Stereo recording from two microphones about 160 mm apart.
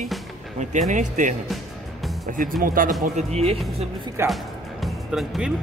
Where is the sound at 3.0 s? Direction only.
45° right (ahead or behind).